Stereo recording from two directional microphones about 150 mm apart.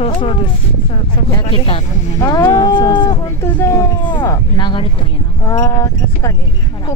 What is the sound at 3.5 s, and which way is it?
Speech, 15° left (ahead or behind).